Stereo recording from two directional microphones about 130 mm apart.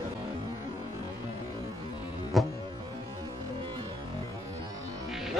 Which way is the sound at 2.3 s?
Centre (ahead or behind).